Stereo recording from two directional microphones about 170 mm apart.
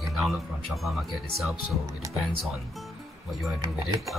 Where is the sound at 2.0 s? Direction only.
20° right (ahead or behind).